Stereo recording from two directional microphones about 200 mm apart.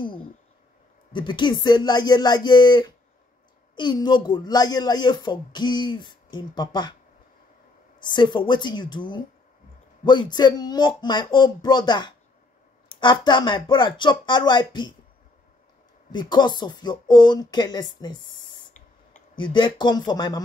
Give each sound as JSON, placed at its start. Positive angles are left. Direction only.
{"t": 1.1, "sound": "speech", "side_deg": 25}
{"t": 8.0, "sound": "speech", "side_deg": 25}
{"t": 16.1, "sound": "speech", "side_deg": 20}